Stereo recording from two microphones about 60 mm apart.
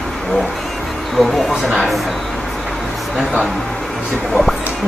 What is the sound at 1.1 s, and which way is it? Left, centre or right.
Speech, centre.